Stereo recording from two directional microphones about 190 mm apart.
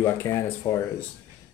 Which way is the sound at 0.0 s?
15° left (ahead or behind).